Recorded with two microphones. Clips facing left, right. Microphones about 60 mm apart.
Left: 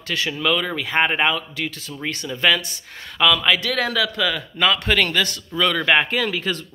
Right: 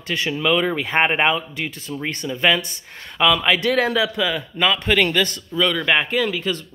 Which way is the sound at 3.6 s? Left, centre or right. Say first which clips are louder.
Right 3 dB; right.